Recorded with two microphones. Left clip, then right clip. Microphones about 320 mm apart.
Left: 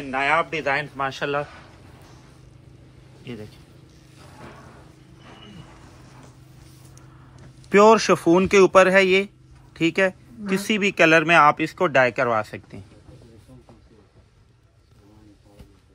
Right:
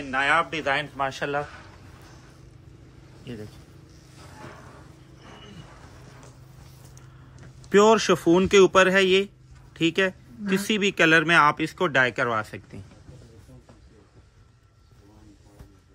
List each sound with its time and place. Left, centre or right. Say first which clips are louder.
0.1 s speech: left 1 dB; centre
8.2 s speech: left 2 dB; centre